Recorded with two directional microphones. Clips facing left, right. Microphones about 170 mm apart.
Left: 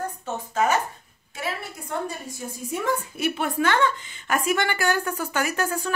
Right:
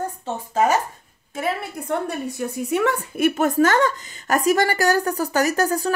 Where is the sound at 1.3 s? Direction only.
55° right (ahead or behind).